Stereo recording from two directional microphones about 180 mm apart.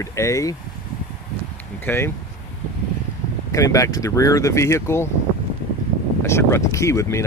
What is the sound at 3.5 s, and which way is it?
Speech, 20° left (ahead or behind).